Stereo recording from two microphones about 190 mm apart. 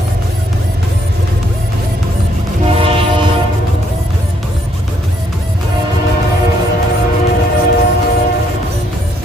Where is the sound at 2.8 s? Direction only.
30° right (ahead or behind).